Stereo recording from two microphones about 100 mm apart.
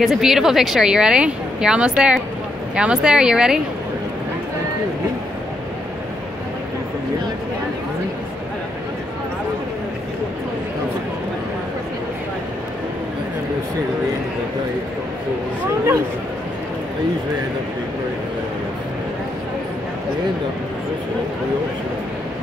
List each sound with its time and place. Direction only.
0.0 s speech: 5° right (ahead or behind)